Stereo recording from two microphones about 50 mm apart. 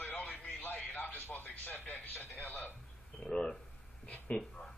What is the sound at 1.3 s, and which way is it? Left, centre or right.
Music, left.